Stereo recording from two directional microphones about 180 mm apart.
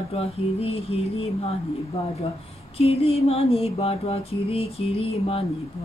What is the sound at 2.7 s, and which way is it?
Mantra, 35° left (ahead or behind).